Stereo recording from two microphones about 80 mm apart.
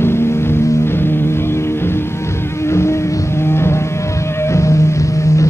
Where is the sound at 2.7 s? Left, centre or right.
Left.